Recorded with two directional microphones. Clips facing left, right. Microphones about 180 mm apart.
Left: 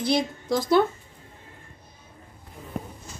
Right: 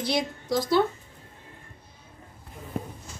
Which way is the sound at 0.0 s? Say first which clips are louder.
Left 3 dB; 50° left (ahead or behind).